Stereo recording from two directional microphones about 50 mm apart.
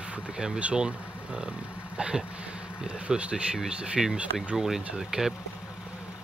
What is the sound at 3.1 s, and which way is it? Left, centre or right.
Speech, right.